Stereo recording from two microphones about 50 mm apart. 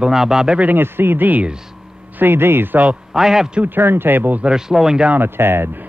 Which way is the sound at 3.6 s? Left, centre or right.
Right.